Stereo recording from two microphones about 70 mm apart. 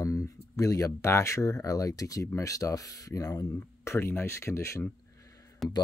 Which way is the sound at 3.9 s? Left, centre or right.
Left.